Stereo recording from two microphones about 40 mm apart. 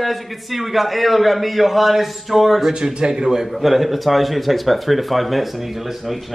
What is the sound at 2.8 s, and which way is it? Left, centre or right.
Speech, centre.